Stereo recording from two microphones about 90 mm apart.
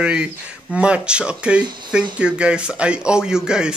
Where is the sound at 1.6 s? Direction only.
55° right (ahead or behind).